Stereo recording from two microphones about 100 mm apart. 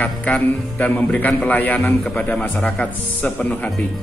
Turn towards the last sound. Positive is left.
turn(degrees=15)  # may be behind; listen again after turning